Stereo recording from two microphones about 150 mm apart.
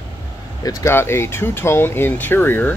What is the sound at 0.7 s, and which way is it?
Speech, 15° left (ahead or behind).